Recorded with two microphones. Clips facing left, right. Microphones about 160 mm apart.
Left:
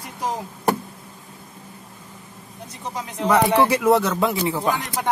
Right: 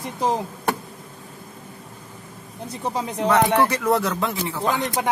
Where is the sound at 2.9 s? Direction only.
35° right (ahead or behind).